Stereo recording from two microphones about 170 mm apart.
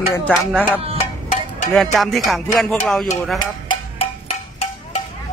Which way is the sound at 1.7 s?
Centre (ahead or behind).